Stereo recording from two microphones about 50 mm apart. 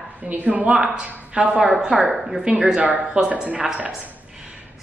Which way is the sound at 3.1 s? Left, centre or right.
Centre.